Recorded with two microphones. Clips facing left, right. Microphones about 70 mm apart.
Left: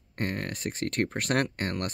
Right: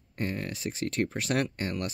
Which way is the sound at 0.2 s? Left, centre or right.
Left.